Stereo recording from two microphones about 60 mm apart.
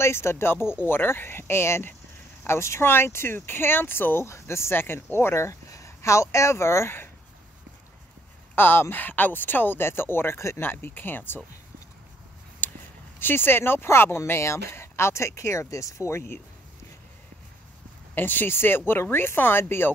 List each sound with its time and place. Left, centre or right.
0.0 s speech: left
8.5 s speech: left
12.6 s a sound: left
13.2 s speech: left
18.1 s speech: left